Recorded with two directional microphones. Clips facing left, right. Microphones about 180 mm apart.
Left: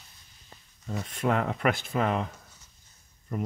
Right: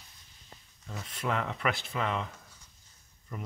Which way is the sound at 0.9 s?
45° left (ahead or behind).